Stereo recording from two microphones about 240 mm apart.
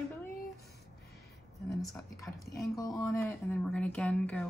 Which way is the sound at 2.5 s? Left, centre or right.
Left.